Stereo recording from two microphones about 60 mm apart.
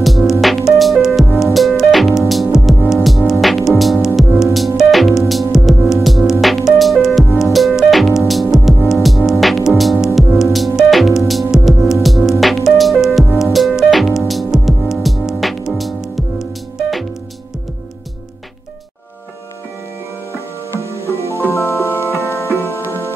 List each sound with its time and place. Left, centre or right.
0.2 s music: centre
21.1 s music: left